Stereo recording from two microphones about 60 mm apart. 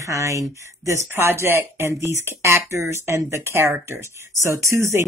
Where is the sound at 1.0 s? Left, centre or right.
Right.